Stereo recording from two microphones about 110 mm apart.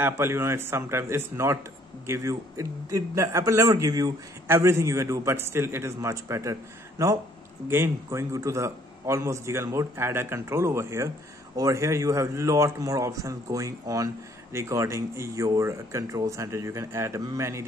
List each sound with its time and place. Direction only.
0.0 s a man's voice: 20° right (ahead or behind)